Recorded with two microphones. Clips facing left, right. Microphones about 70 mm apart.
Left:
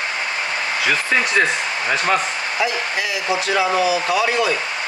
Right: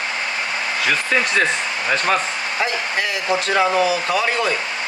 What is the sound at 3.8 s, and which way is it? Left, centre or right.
Speech, centre.